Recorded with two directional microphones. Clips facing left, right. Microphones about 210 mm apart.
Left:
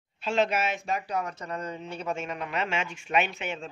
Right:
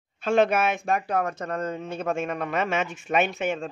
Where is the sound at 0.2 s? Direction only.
55° right (ahead or behind).